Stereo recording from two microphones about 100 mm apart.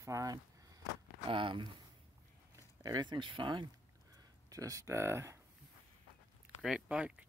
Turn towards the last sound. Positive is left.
turn(degrees=-10)  # may be behind; listen again after turning